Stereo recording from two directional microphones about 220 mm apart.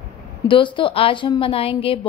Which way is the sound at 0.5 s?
20° left (ahead or behind).